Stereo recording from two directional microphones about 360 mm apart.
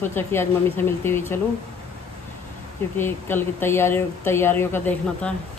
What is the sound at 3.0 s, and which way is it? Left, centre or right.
Speech, centre.